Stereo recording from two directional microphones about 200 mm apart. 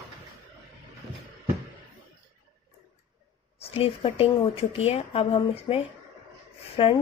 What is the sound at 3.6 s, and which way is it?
A woman's voice, 30° left (ahead or behind).